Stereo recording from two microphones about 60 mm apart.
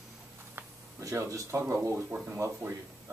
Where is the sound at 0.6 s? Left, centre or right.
Right.